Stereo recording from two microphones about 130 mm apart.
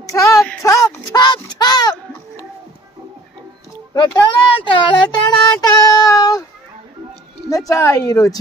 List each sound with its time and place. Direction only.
0.1 s speech: 25° left (ahead or behind)
0.6 s a sound: 25° left (ahead or behind)
1.1 s speech: 35° left (ahead or behind)
3.9 s speech: 35° left (ahead or behind)
7.4 s a woman's voice: 25° left (ahead or behind)